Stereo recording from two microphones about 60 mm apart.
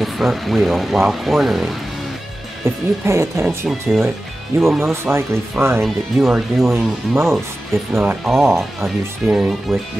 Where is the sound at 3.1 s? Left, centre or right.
Right.